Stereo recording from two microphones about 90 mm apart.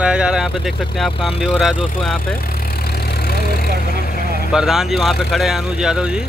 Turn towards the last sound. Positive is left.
turn(degrees=-10)  # may be behind; listen again after turning